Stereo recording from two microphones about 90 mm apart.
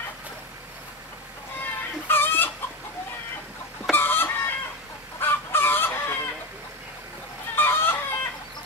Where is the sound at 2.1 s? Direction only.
25° left (ahead or behind).